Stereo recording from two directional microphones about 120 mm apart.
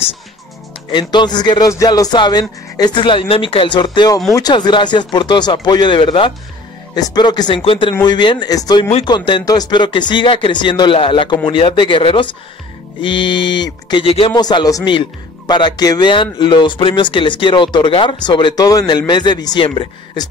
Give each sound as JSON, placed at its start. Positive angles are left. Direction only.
{"t": 0.9, "sound": "speech", "side_deg": 40}
{"t": 14.0, "sound": "speech", "side_deg": 50}
{"t": 14.3, "sound": "speech", "side_deg": 35}